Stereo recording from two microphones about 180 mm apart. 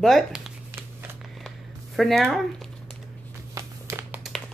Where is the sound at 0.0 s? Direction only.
Centre (ahead or behind).